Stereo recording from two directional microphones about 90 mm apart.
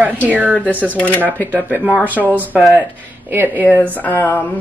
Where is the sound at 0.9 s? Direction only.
15° left (ahead or behind).